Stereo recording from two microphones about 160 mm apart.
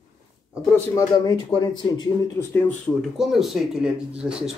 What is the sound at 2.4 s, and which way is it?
Speech, 10° left (ahead or behind).